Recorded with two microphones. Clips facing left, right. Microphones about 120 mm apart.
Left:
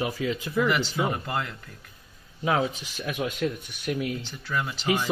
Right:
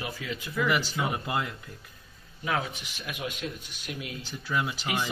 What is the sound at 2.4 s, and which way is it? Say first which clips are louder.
Speech: left 6 dB; 30° left (ahead or behind).